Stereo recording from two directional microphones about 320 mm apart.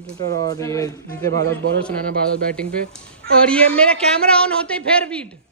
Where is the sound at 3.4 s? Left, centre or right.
Centre.